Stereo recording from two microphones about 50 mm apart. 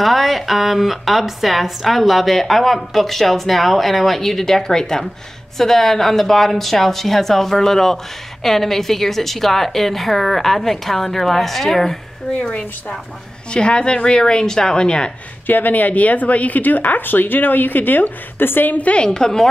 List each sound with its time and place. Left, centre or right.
0.0 s a woman's voice: centre
13.5 s a woman's voice: centre
15.4 s speech: left
18.8 s a woman's voice: left
19.0 s a woman's voice: centre